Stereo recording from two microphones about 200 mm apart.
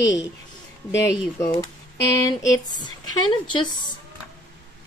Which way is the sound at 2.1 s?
20° left (ahead or behind).